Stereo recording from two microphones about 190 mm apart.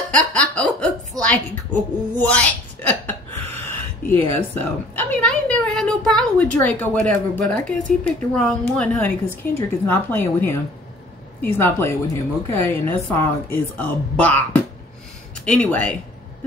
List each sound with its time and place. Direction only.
0.1 s laughter: 5° left (ahead or behind)
1.2 s a woman's voice: 5° left (ahead or behind)
2.1 s a sound: 5° left (ahead or behind)
4.1 s a woman's voice: 10° left (ahead or behind)